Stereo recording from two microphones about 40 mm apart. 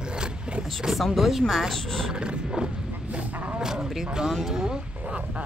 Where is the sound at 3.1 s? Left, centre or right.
Right.